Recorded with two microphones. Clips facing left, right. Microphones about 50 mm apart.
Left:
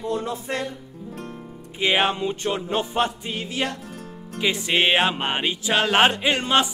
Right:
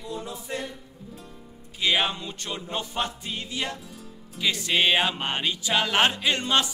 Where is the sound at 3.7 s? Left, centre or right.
Left.